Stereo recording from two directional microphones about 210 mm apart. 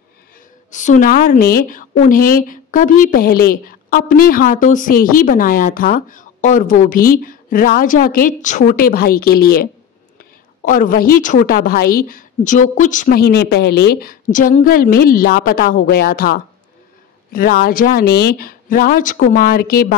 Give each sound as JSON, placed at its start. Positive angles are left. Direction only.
{"t": 0.7, "sound": "a woman's voice", "side_deg": 35}
{"t": 17.3, "sound": "a woman's voice", "side_deg": 45}